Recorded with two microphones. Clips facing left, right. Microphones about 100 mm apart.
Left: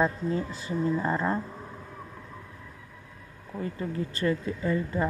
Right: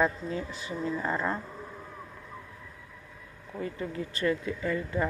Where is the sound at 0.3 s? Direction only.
35° left (ahead or behind).